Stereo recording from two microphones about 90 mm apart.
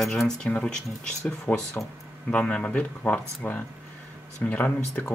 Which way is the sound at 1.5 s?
30° left (ahead or behind).